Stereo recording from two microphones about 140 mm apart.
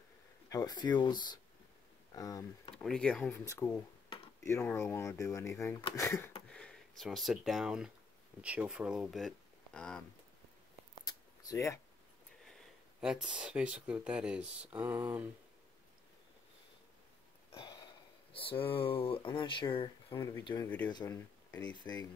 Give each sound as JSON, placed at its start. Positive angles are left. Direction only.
{"t": 0.5, "sound": "speech", "side_deg": 25}
{"t": 2.7, "sound": "speech", "side_deg": 5}
{"t": 3.4, "sound": "speech", "side_deg": 20}
{"t": 6.5, "sound": "speech", "side_deg": 5}
{"t": 11.0, "sound": "a sound", "side_deg": 25}
{"t": 12.4, "sound": "speech", "side_deg": 0}
{"t": 17.5, "sound": "sniff", "side_deg": 35}
{"t": 18.3, "sound": "speech", "side_deg": 40}
{"t": 20.1, "sound": "speech", "side_deg": 20}